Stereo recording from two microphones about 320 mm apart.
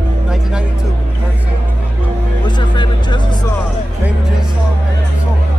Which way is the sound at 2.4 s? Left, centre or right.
Centre.